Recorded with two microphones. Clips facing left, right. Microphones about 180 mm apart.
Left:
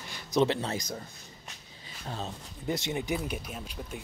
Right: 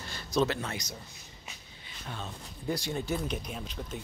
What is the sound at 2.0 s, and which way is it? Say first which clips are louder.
Speech: left 4 dB; 35° left (ahead or behind).